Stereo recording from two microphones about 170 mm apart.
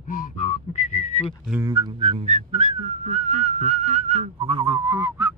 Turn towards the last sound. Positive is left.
turn(degrees=-15)  # may be behind; listen again after turning